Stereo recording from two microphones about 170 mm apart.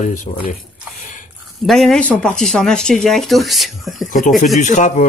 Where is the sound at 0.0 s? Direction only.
50° left (ahead or behind).